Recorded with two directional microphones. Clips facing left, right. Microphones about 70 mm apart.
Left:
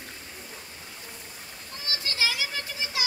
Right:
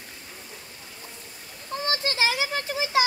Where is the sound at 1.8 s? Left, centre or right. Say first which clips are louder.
Right 5 dB; right.